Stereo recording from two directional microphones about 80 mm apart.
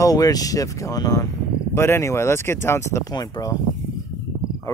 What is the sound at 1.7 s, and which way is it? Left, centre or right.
Speech, left.